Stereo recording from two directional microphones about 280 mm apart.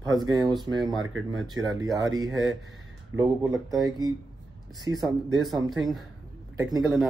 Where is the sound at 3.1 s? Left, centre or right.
Centre.